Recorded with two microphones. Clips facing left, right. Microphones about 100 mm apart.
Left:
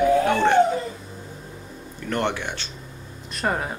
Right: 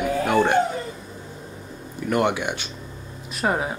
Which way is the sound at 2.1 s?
10° right (ahead or behind).